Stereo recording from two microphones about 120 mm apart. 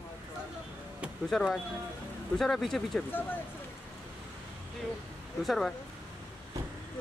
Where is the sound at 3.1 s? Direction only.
15° left (ahead or behind).